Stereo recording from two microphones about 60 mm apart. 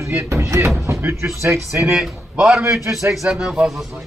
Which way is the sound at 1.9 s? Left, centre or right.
Centre.